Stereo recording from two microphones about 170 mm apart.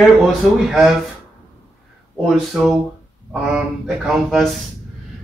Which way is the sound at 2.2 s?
Centre (ahead or behind).